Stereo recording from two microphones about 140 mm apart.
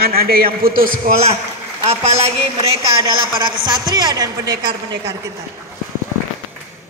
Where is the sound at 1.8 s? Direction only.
45° right (ahead or behind).